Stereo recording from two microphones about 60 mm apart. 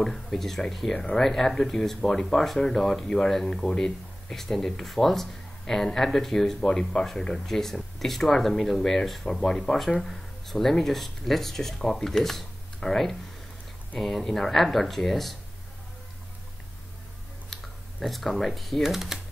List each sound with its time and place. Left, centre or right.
0.0 s speech: centre
17.5 s speech: centre